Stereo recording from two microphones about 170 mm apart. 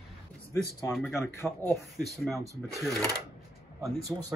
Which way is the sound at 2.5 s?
20° right (ahead or behind).